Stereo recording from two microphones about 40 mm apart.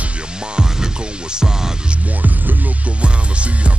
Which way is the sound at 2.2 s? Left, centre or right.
Right.